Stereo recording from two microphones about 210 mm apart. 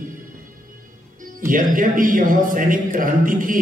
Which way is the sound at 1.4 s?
40° right (ahead or behind).